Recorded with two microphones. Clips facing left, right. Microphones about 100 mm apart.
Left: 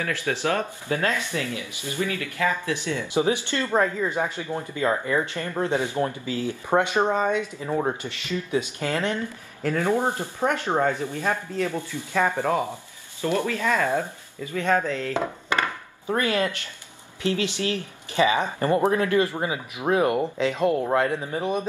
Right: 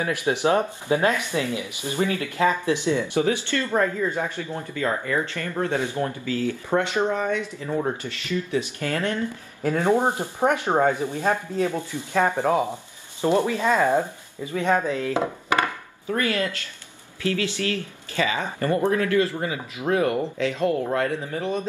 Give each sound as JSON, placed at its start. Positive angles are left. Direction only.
{"t": 0.0, "sound": "speech", "side_deg": -20}
{"t": 3.2, "sound": "speech", "side_deg": 20}
{"t": 9.6, "sound": "speech", "side_deg": -20}
{"t": 16.2, "sound": "speech", "side_deg": 20}